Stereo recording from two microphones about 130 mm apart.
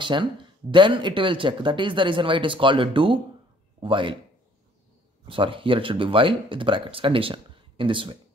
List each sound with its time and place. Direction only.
0.0 s speech: 40° right (ahead or behind)
5.3 s speech: 40° right (ahead or behind)